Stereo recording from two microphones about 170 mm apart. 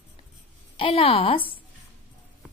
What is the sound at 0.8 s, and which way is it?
Speech, 35° left (ahead or behind).